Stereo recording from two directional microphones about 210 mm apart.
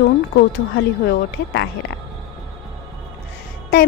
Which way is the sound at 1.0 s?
55° left (ahead or behind).